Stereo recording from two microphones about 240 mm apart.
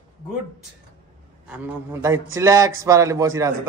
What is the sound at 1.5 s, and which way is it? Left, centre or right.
Speech, centre.